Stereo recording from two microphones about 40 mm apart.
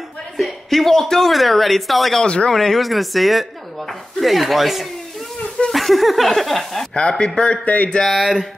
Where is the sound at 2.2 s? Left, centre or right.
Centre.